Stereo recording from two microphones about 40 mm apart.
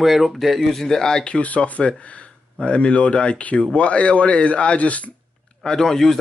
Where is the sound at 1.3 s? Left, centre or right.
Left.